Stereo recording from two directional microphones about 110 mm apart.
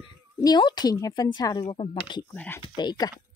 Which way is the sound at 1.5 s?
60° left (ahead or behind).